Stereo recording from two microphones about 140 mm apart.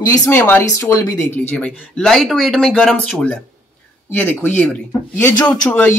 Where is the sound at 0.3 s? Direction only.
15° left (ahead or behind).